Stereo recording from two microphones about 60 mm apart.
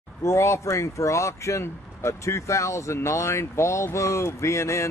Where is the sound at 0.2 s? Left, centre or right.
Left.